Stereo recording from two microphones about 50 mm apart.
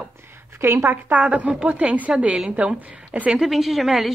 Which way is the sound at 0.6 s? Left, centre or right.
Right.